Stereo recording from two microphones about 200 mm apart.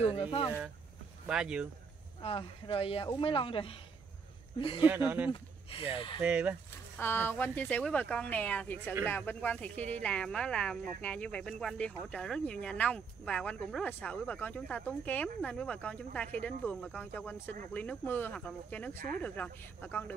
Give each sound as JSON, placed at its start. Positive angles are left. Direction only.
{"t": 0.0, "sound": "speech", "side_deg": 25}
{"t": 1.2, "sound": "speech", "side_deg": -5}
{"t": 2.2, "sound": "speech", "side_deg": 25}
{"t": 4.8, "sound": "speech", "side_deg": -10}
{"t": 5.3, "sound": "speech", "side_deg": 25}
{"t": 6.2, "sound": "speech", "side_deg": -5}
{"t": 7.0, "sound": "speech", "side_deg": 10}